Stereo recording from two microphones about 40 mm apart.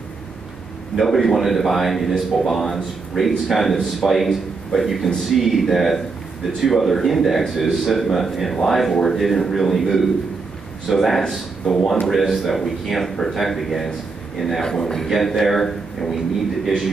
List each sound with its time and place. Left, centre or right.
0.9 s a man's voice: centre
11.6 s speech: centre
12.1 s speech: centre
14.6 s a man's voice: centre